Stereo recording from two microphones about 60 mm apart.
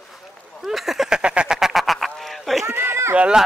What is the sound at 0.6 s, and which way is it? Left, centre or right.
Speech, centre.